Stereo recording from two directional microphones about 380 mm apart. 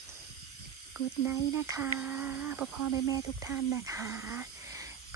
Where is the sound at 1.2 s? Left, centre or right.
Centre.